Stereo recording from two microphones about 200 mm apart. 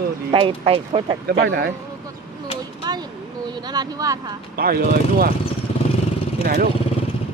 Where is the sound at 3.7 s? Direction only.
15° right (ahead or behind).